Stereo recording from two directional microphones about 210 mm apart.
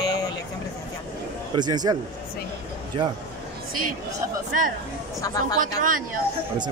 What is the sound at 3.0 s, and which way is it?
Speech, 25° right (ahead or behind).